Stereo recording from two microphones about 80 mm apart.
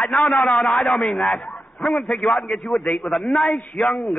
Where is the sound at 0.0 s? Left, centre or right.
Centre.